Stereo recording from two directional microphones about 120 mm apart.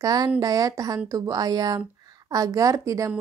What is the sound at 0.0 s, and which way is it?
Speech, 30° right (ahead or behind).